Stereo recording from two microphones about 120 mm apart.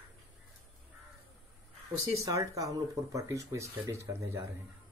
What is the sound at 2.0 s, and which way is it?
Speech, 25° right (ahead or behind).